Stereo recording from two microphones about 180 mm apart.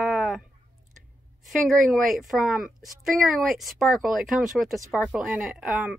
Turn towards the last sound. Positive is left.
turn(degrees=-5)  # may be behind; listen again after turning